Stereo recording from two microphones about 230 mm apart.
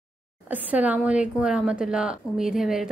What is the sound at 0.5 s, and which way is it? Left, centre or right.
Speech, centre.